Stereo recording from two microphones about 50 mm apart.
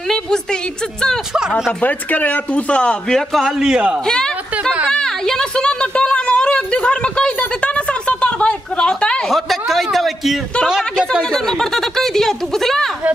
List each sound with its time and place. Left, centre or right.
0.1 s a sound: centre
1.8 s speech: left
3.2 s a man's voice: centre
3.5 s a man's voice: centre
4.0 s a sound: centre
9.3 s a man's voice: centre
11.3 s speech: centre